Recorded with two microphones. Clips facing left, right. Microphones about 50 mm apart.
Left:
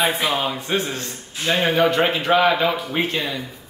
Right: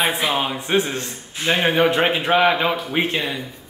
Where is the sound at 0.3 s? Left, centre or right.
Centre.